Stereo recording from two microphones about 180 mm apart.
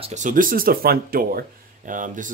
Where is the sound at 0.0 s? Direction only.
40° right (ahead or behind).